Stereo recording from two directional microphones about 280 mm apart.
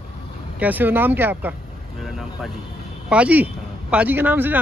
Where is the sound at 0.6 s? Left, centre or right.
Centre.